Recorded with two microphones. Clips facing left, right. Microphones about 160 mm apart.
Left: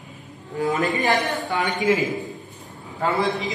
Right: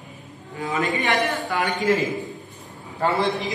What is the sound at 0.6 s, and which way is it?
Speech, 40° left (ahead or behind).